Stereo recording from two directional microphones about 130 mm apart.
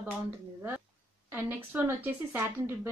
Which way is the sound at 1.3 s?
15° right (ahead or behind).